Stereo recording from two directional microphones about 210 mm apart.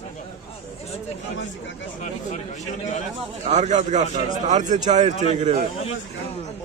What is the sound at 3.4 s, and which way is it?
A man's voice, 35° right (ahead or behind).